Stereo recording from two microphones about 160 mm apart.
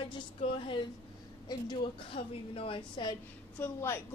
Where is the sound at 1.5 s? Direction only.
30° left (ahead or behind).